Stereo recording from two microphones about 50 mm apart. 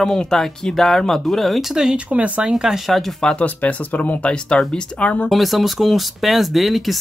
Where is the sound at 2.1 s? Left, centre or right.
Right.